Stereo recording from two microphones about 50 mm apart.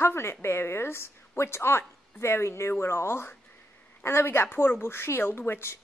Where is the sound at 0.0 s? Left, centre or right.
Left.